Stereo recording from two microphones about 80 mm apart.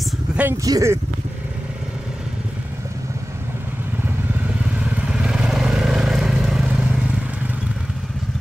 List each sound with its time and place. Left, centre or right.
0.7 s speech: right
4.7 s vehicle: centre